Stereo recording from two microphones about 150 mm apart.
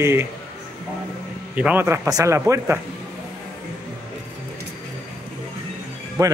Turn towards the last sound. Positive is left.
turn(degrees=-20)  # may be behind; listen again after turning